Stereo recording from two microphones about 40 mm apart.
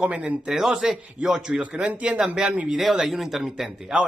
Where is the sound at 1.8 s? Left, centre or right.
Right.